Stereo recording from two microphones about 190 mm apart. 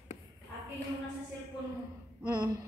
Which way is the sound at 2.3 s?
20° right (ahead or behind).